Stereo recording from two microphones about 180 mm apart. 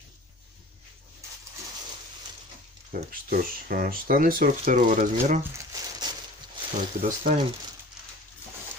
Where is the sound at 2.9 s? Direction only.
50° right (ahead or behind).